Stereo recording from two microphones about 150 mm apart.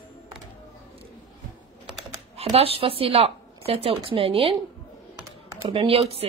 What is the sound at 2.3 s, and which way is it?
A woman's voice, 40° right (ahead or behind).